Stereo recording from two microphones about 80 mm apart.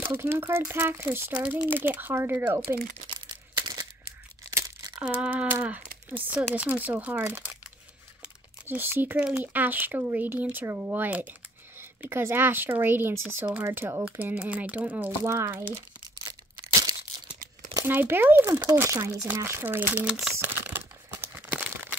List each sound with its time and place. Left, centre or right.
0.0 s speech: right
4.5 s tearing: right
5.2 s speech: centre; by 14.0 s right
14.0 s speech: centre
15.2 s speech: right
16.6 s tearing: right
17.8 s speech: right
20.3 s a sound: right
21.4 s crumpling: centre